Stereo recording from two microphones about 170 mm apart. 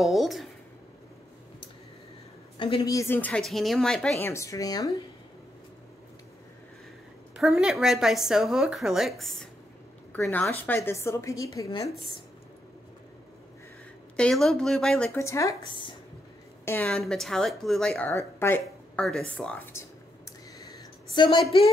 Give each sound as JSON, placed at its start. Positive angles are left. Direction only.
{"t": 0.0, "sound": "speech", "side_deg": 0}
{"t": 2.5, "sound": "a woman's voice", "side_deg": 30}
{"t": 4.2, "sound": "a woman's voice", "side_deg": 15}
{"t": 7.3, "sound": "a woman's voice", "side_deg": -5}
{"t": 14.1, "sound": "speech", "side_deg": 5}
{"t": 15.1, "sound": "a woman's voice", "side_deg": 15}
{"t": 16.8, "sound": "a woman's voice", "side_deg": 5}
{"t": 21.1, "sound": "a woman's voice", "side_deg": 25}